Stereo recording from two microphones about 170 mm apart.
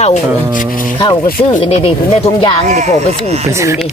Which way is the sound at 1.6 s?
35° left (ahead or behind).